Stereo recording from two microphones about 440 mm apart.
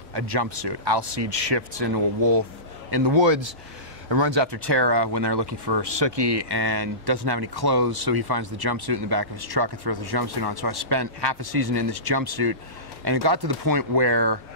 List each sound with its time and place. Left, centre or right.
0.1 s speech: right